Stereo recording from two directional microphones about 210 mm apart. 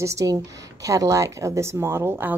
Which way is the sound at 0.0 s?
15° right (ahead or behind).